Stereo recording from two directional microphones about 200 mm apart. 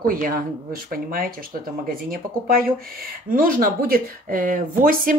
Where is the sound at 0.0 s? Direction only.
45° right (ahead or behind).